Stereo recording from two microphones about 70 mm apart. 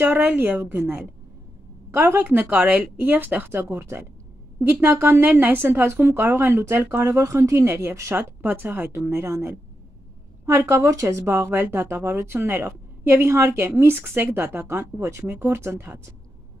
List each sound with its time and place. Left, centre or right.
0.0 s a woman's voice: right
2.0 s a woman's voice: right
7.2 s speech: right
8.4 s speech: right